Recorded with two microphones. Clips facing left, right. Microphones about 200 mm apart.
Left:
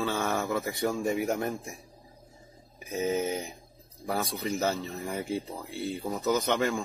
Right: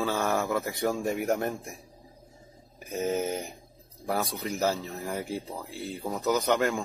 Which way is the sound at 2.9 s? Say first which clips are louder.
Even; centre (ahead or behind).